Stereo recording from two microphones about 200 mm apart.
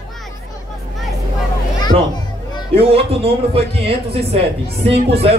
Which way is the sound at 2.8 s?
30° right (ahead or behind).